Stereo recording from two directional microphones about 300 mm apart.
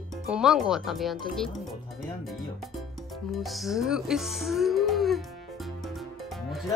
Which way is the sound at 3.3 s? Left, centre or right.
Centre.